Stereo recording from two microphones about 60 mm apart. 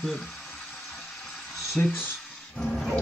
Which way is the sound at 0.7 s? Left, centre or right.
Centre.